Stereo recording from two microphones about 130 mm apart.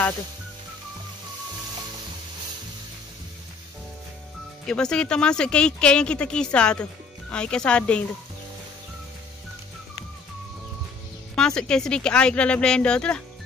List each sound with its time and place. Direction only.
4.6 s speech: 5° left (ahead or behind)
11.3 s speech: 5° left (ahead or behind)